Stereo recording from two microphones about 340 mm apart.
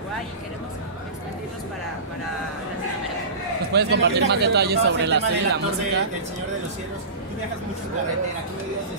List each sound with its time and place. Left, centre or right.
3.7 s speech: right